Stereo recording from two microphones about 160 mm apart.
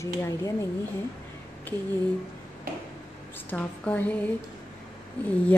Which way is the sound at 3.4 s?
10° left (ahead or behind).